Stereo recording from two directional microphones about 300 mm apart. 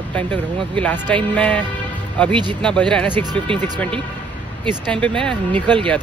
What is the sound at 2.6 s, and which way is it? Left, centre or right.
Speech, centre.